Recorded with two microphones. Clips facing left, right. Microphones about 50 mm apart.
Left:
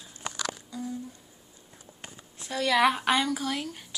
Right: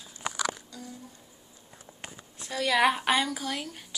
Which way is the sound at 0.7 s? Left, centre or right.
Centre.